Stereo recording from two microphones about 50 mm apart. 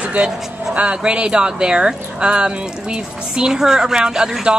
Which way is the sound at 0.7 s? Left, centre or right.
Right.